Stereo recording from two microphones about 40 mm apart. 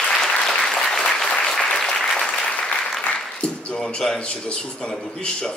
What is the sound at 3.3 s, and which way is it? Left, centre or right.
Music, left.